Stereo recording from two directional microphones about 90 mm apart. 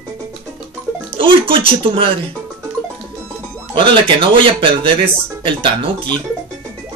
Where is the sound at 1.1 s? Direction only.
80° right.